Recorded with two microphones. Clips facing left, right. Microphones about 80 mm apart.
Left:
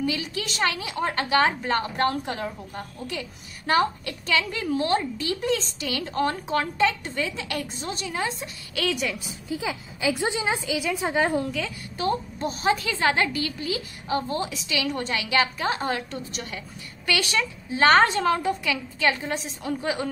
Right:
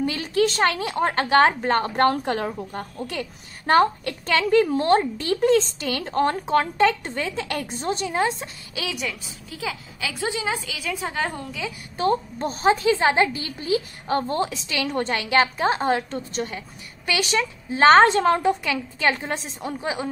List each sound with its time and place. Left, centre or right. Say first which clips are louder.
0.0 s a woman's voice: right 7 dB; right
8.8 s a woman's voice: left 3 dB; centre
9.2 s a woman's voice: left 2 dB; left
12.0 s a woman's voice: right 4 dB; right